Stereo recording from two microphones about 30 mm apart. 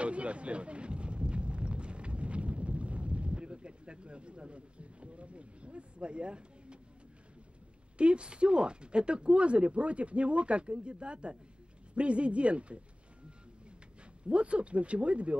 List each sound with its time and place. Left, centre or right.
0.0 s a sound: right
8.0 s speech: right
14.3 s speech: right